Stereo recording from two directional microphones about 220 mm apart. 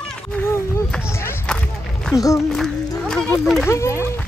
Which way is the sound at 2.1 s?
15° left (ahead or behind).